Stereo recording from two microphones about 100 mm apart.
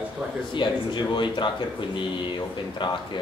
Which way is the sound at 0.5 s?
50° left (ahead or behind).